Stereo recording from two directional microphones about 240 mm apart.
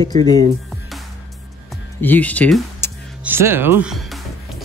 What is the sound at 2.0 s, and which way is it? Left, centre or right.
Speech, centre.